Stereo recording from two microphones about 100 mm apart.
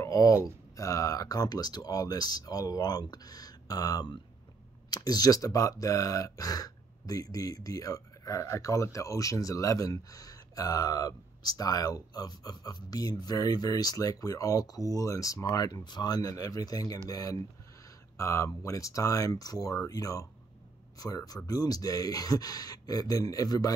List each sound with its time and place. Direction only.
0.0 s speech: 35° left (ahead or behind)